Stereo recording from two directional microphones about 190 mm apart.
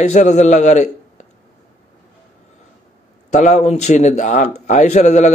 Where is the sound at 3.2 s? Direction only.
40° left (ahead or behind).